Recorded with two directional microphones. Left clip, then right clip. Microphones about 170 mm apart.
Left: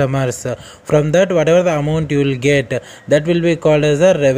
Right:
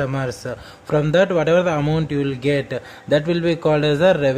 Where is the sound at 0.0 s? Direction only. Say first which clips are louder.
Left 6 dB; 25° left (ahead or behind).